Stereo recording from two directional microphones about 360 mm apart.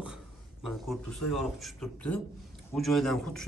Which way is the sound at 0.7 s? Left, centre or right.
Centre.